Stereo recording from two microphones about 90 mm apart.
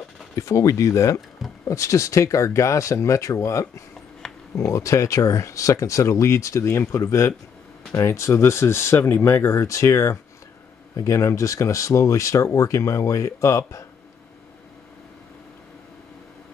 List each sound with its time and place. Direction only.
0.4 s speech: 35° left (ahead or behind)
4.2 s a sound: 5° left (ahead or behind)
4.6 s speech: 35° left (ahead or behind)